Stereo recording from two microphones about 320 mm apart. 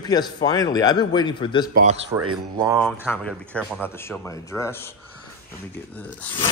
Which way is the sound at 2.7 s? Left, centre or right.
Centre.